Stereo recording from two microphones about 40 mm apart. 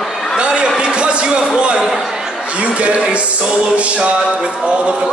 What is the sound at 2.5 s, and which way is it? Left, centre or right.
Music, right.